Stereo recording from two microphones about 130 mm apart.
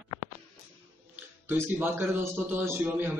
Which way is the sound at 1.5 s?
15° right (ahead or behind).